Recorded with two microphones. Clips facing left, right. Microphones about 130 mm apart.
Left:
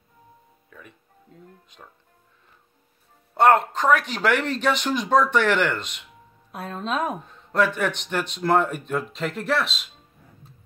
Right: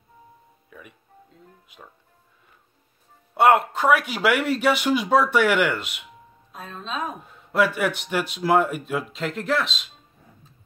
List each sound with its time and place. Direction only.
0.7 s speech: 10° right (ahead or behind)
3.3 s speech: 10° right (ahead or behind)
6.5 s speech: 65° left (ahead or behind)
7.2 s speech: 5° right (ahead or behind)